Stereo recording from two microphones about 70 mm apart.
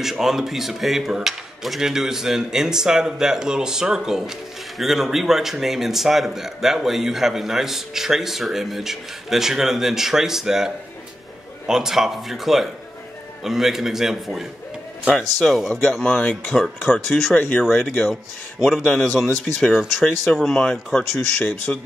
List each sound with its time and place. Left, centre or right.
0.0 s cutlery: centre
4.7 s a man's voice: centre
16.0 s speech: centre
16.5 s a man's voice: centre
17.3 s speech: left
17.7 s a man's voice: centre
21.7 s speech: centre